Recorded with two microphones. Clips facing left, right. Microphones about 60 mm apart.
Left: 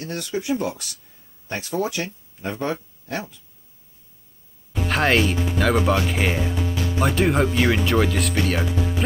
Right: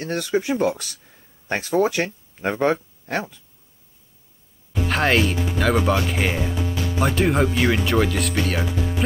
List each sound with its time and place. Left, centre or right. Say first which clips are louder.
0.3 s speech: right 4 dB; right
4.8 s speech: even; centre